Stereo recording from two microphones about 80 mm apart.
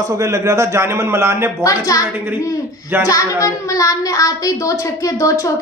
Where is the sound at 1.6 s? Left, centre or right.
Left.